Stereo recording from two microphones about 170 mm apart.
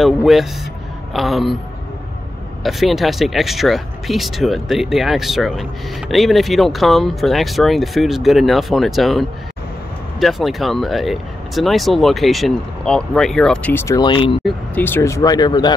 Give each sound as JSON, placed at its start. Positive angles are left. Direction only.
{"t": 0.0, "sound": "speech", "side_deg": 0}
{"t": 2.6, "sound": "speech", "side_deg": 0}
{"t": 10.2, "sound": "speech", "side_deg": 0}
{"t": 14.0, "sound": "speech", "side_deg": 30}
{"t": 14.8, "sound": "speech", "side_deg": 15}